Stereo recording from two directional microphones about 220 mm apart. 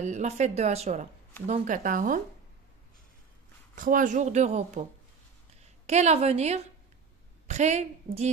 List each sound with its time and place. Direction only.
0.0 s speech: 30° right (ahead or behind)
3.7 s speech: 35° right (ahead or behind)
5.9 s a woman's voice: 30° right (ahead or behind)